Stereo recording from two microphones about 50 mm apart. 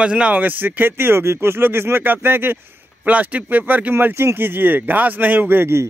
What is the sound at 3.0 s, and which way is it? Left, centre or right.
Speech, right.